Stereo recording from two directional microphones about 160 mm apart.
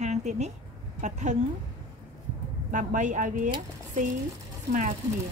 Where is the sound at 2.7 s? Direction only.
50° right (ahead or behind).